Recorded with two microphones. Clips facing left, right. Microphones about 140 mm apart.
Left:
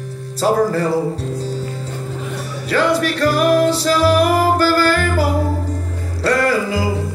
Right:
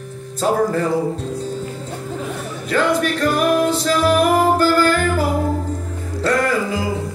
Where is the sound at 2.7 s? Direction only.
35° left (ahead or behind).